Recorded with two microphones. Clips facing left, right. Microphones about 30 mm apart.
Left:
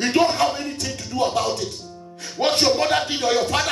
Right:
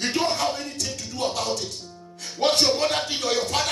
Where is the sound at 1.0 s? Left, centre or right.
Left.